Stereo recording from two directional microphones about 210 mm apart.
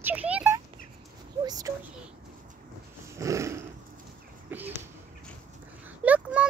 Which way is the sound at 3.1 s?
15° right (ahead or behind).